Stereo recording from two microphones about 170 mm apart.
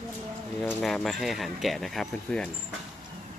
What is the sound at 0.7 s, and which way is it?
Speech, 5° left (ahead or behind).